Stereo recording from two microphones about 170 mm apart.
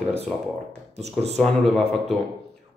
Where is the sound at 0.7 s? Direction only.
40° right (ahead or behind).